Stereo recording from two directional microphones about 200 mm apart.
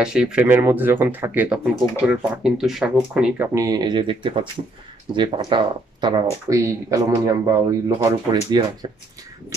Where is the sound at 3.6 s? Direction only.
20° right (ahead or behind).